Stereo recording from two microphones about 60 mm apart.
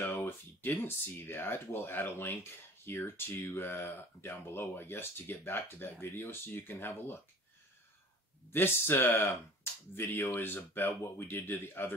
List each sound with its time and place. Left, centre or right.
0.0 s speech: left
8.5 s speech: left